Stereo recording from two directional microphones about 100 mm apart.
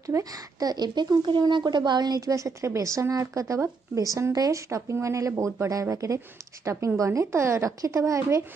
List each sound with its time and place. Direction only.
0.0 s speech: 35° right (ahead or behind)